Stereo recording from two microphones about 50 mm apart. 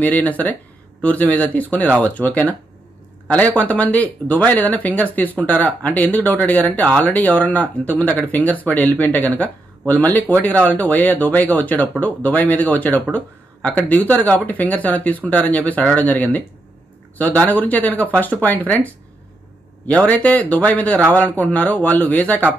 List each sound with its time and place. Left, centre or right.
0.0 s speech: left